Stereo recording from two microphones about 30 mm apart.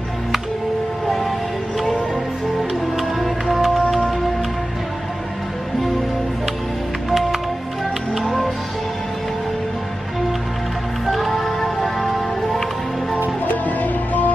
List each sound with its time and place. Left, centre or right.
1.0 s music: centre
2.7 s music: centre
7.1 s music: centre
11.1 s music: centre
13.5 s music: left